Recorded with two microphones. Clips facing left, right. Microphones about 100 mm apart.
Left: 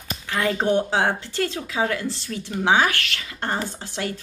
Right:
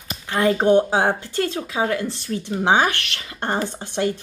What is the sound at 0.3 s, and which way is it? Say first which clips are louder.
Speech: right 5 dB; 25° right (ahead or behind).